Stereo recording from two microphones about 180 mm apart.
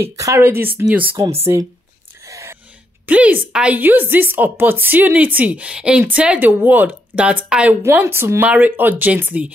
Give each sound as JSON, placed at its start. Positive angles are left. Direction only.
{"t": 0.0, "sound": "a woman's voice", "side_deg": -15}
{"t": 2.2, "sound": "gasp", "side_deg": -15}
{"t": 3.1, "sound": "a woman's voice", "side_deg": -10}